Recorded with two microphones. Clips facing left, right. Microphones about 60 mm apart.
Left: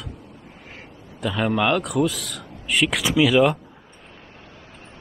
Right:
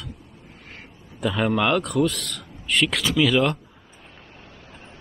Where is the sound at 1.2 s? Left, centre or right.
Centre.